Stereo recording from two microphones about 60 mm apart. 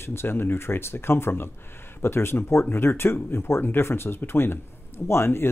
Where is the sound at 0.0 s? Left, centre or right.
Left.